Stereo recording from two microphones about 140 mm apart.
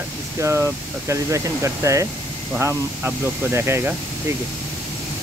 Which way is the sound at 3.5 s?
20° right (ahead or behind).